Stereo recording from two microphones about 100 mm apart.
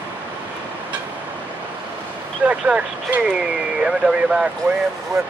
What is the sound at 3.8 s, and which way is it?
Speech, 5° right (ahead or behind).